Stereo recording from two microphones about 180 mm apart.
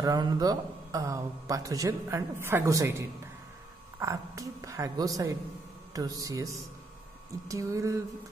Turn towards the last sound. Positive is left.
turn(degrees=-15)  # may be behind; listen again after turning